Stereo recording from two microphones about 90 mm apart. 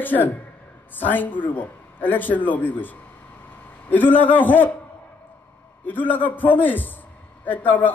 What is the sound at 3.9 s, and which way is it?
Speech, 20° left (ahead or behind).